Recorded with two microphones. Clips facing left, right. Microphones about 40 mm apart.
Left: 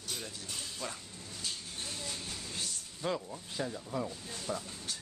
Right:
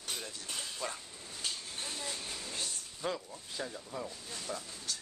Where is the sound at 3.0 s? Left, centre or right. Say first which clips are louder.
Left 2 dB; centre.